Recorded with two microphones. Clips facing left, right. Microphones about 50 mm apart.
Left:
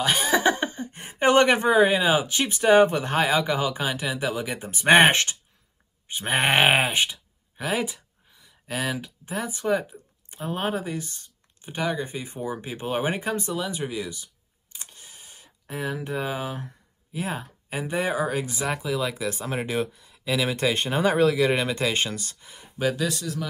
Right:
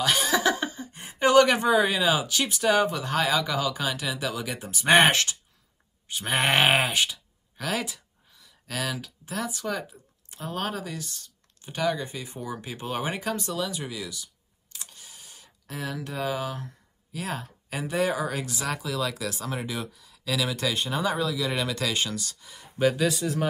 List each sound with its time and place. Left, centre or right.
0.0 s a sound: left
0.7 s speech: left
14.8 s a sound: left
15.7 s speech: centre
20.5 s a man's voice: left
21.5 s speech: left
22.8 s speech: centre
23.2 s speech: right